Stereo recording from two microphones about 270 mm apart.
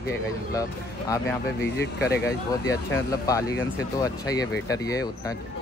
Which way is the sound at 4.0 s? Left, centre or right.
Centre.